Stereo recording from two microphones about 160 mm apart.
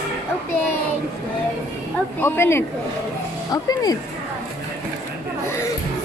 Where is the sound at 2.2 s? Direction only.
15° left (ahead or behind).